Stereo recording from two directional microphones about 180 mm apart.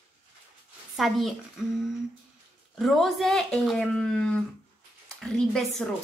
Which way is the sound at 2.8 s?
Centre (ahead or behind).